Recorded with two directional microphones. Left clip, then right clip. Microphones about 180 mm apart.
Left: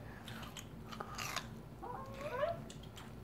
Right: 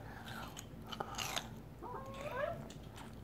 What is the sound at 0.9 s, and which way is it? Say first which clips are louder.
Biting: right 2 dB; 20° right (ahead or behind).